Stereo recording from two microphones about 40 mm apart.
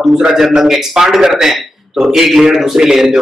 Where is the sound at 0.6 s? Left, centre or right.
Centre.